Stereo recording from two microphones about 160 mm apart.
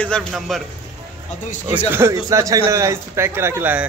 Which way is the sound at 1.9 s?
15° right (ahead or behind).